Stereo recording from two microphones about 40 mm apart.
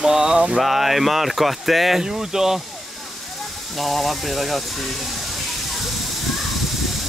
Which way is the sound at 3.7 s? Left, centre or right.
Centre.